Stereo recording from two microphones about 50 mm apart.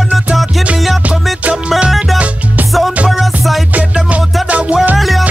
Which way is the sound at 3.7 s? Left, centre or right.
Right.